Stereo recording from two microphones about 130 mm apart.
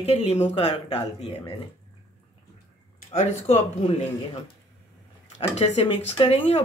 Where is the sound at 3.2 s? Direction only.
55° left (ahead or behind).